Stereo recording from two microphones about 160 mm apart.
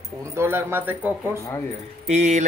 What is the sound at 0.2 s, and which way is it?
A man's voice, 15° right (ahead or behind).